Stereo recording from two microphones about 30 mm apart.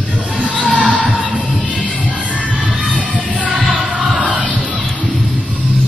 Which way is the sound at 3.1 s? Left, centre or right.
Left.